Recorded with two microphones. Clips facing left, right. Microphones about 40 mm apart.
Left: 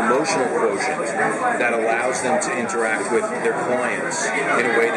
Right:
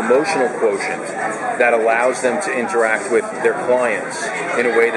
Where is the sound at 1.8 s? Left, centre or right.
Right.